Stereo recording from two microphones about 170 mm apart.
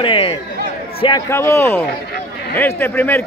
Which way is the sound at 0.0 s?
30° left (ahead or behind).